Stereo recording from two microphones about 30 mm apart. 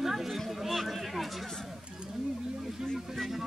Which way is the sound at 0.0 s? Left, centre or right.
Centre.